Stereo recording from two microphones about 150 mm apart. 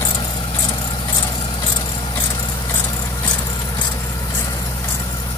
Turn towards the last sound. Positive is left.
turn(degrees=25)  # may be behind; listen again after turning